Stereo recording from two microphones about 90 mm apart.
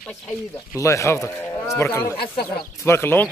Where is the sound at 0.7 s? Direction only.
35° left (ahead or behind).